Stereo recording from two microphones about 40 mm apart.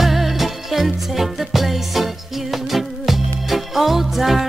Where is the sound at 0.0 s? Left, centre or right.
Centre.